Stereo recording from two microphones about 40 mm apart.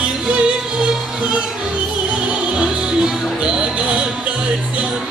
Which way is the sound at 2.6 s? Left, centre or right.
Right.